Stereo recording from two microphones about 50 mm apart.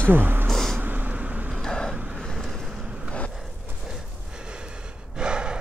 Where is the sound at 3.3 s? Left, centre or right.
Centre.